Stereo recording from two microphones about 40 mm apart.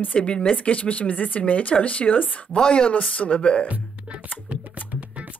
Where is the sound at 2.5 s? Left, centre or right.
Left.